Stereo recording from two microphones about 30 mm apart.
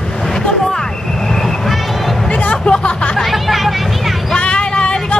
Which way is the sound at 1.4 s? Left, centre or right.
Centre.